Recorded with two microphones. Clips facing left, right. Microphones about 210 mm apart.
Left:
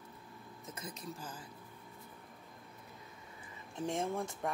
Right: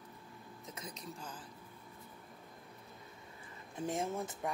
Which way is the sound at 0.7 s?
Centre (ahead or behind).